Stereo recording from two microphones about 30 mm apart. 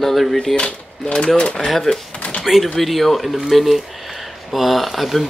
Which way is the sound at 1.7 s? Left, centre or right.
Centre.